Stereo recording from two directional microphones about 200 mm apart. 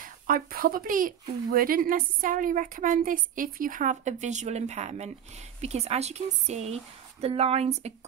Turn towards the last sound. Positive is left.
turn(degrees=-30)  # may be behind; listen again after turning